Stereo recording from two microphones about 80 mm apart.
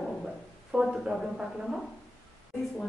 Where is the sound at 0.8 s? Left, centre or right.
Centre.